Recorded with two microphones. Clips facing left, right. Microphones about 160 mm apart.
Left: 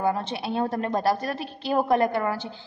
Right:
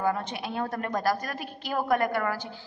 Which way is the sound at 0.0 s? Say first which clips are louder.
Left 3 dB; 30° left (ahead or behind).